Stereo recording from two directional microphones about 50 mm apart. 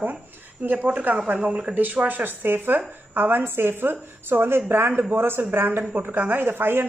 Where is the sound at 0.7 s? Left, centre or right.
Right.